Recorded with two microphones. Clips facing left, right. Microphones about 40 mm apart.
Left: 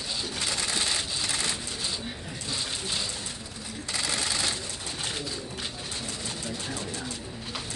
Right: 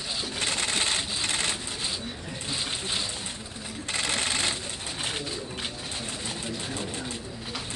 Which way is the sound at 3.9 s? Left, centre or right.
Right.